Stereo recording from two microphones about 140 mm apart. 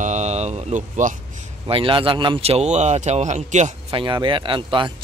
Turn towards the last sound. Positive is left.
turn(degrees=-35)  # may be behind; listen again after turning